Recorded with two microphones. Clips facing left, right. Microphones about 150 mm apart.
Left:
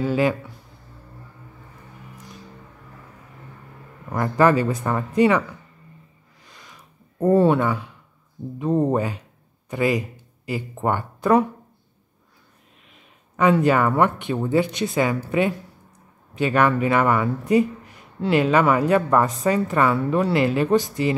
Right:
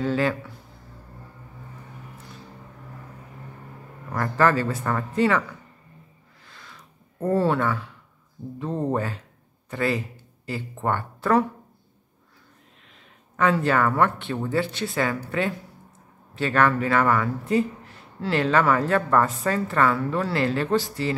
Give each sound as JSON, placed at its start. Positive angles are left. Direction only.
{"t": 0.0, "sound": "speech", "side_deg": 15}
{"t": 4.1, "sound": "speech", "side_deg": 15}
{"t": 6.4, "sound": "a sound", "side_deg": 15}
{"t": 8.5, "sound": "speech", "side_deg": 15}
{"t": 12.9, "sound": "speech", "side_deg": 15}
{"t": 16.3, "sound": "speech", "side_deg": 15}